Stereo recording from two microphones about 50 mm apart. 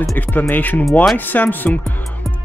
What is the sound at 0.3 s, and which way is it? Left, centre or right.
Speech, left.